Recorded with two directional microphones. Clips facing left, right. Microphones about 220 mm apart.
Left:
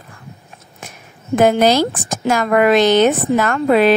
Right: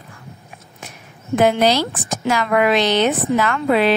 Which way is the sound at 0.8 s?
45° left (ahead or behind).